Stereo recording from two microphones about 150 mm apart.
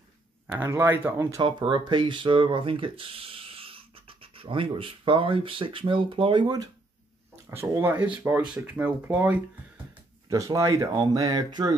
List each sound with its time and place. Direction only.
0.5 s speech: 15° right (ahead or behind)
1.6 s speech: 35° right (ahead or behind)
7.5 s speech: 15° right (ahead or behind)